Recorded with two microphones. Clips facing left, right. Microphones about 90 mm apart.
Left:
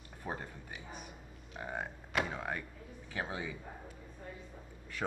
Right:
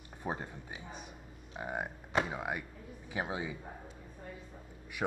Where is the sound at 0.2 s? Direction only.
20° right (ahead or behind).